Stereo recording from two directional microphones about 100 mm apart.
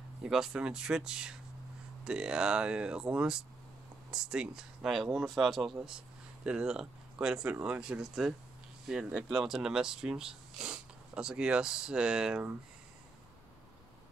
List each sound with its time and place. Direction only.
0.2 s speech: 5° right (ahead or behind)
5.8 s speech: 10° right (ahead or behind)